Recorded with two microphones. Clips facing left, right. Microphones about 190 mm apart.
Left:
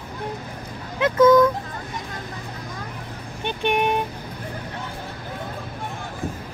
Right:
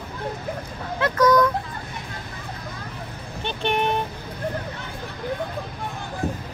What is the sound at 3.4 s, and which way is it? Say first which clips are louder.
Vehicle: left 2 dB; 15° left (ahead or behind).